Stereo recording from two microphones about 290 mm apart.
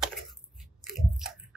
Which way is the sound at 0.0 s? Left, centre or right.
Centre.